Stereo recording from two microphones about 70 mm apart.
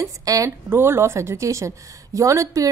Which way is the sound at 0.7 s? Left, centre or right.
Right.